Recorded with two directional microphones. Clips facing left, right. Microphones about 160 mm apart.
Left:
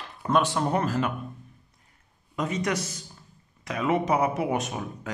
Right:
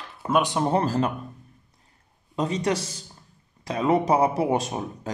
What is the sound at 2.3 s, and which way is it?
Speech, 30° right (ahead or behind).